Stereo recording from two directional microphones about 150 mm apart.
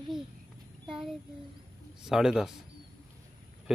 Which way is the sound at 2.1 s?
Centre (ahead or behind).